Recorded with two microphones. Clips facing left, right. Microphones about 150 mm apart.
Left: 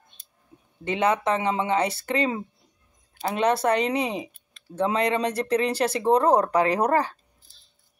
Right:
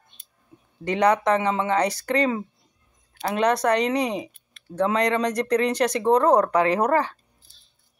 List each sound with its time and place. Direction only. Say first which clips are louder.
0.8 s speech: right 3 dB; 25° left (ahead or behind)
3.3 s speech: right 1 dB; 25° left (ahead or behind)